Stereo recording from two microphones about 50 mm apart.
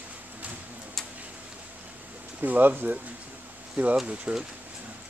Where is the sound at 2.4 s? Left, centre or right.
Right.